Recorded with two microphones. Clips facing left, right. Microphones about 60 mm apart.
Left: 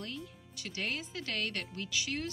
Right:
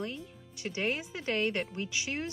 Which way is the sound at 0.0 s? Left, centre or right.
Right.